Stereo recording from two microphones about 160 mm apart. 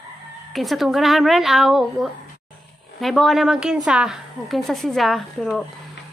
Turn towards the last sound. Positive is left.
turn(degrees=0)  # may be behind; listen again after turning